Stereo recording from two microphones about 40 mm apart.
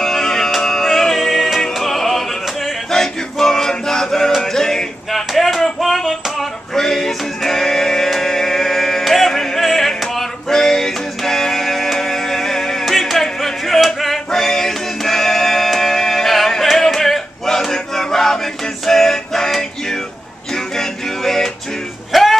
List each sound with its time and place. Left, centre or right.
0.0 s music: centre
2.9 s a sound: centre
4.4 s male singing: centre
5.1 s a sound: centre
6.7 s music: centre
16.6 s male singing: centre
20.5 s music: centre
22.1 s music: centre